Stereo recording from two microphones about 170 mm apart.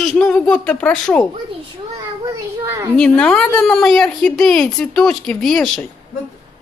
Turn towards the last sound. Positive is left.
turn(degrees=5)  # may be behind; listen again after turning